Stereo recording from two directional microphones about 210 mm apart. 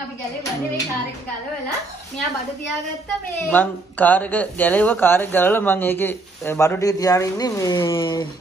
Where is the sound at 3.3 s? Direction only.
10° left (ahead or behind).